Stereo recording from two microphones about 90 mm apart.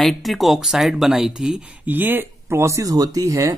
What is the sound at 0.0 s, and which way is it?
Speech, centre (ahead or behind).